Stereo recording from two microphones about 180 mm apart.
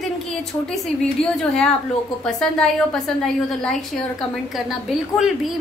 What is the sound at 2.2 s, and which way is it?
A woman's voice, 5° left (ahead or behind).